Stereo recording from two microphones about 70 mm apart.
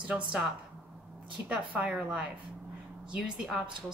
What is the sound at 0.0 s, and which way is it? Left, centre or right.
Speech, centre.